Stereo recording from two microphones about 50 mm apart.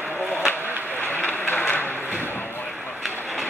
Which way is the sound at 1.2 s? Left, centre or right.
Left.